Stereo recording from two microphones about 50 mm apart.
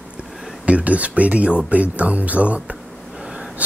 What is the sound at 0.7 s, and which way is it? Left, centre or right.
Speech, right.